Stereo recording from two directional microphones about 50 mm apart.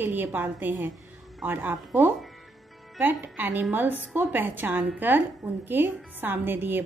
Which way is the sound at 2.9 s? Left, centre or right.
Right.